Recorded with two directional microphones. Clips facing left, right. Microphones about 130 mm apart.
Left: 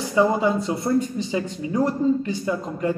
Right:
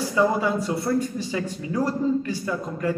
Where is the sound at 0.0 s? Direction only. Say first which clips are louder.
Left 2 dB; 20° left (ahead or behind).